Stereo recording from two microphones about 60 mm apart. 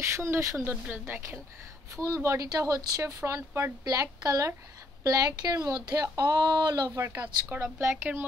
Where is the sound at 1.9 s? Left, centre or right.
Right.